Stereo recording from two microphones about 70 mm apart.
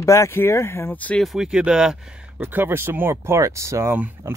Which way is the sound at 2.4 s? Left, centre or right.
Right.